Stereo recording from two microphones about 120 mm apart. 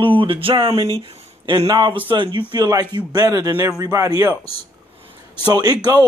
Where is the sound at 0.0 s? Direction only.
45° right (ahead or behind).